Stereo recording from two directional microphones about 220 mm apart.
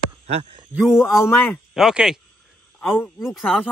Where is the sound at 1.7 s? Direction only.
Centre (ahead or behind).